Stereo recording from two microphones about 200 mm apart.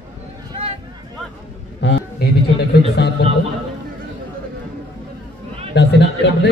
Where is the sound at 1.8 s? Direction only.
60° left (ahead or behind).